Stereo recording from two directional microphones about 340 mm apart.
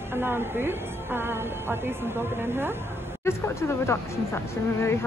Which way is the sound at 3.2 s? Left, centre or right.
Centre.